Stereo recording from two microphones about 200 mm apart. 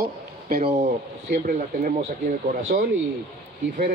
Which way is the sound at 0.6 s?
30° right (ahead or behind).